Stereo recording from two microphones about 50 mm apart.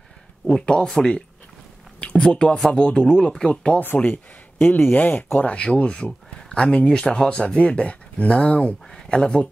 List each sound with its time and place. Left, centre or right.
0.5 s speech: centre
3.8 s speech: left
5.4 s speech: left